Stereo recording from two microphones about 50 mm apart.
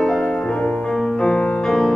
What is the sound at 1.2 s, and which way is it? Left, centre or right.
Music, left.